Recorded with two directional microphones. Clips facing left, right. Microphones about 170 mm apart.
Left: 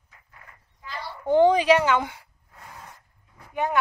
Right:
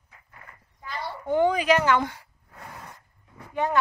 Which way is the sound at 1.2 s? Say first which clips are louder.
Left 5 dB; 30° left (ahead or behind).